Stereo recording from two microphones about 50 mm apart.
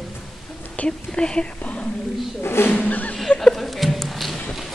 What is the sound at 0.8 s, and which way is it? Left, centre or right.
Whispering, left.